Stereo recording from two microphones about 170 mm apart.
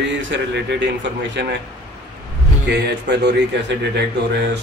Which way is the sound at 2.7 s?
80° right.